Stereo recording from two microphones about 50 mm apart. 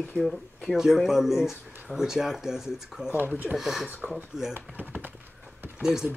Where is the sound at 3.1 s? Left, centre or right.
Right.